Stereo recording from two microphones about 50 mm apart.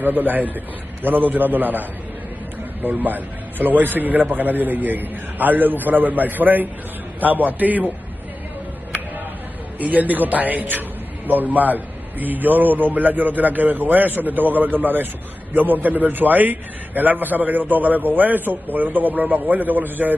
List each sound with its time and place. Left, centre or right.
0.0 s a man's voice: right
9.8 s a man's voice: right